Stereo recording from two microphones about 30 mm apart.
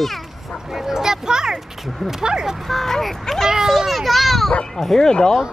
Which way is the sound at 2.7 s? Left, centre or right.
Centre.